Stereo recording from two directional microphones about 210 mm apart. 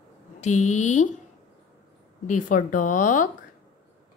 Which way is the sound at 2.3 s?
35° left (ahead or behind).